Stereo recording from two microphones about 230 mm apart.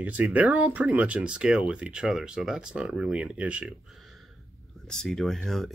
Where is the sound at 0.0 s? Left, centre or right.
Centre.